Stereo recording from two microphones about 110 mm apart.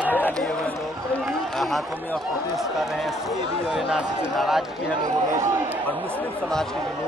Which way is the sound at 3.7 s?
5° right (ahead or behind).